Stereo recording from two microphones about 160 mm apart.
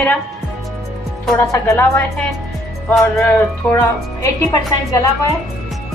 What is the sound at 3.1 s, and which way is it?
Speech, 15° left (ahead or behind).